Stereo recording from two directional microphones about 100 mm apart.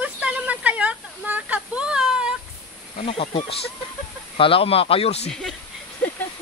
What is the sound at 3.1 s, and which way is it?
Speech, 75° left (ahead or behind).